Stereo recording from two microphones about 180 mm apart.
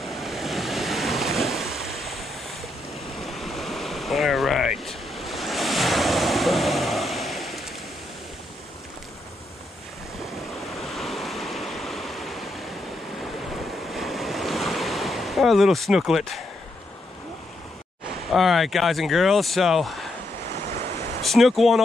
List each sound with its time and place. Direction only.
0.0 s waves: centre (ahead or behind)
10.8 s waves: centre (ahead or behind)
13.9 s waves: centre (ahead or behind)
18.3 s speech: centre (ahead or behind)
20.4 s waves: 70° right (ahead or behind)
21.2 s speech: centre (ahead or behind)